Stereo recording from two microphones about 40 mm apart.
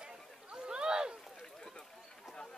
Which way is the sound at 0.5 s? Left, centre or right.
Centre.